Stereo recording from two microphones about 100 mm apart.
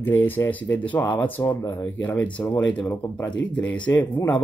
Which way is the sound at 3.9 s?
30° left (ahead or behind).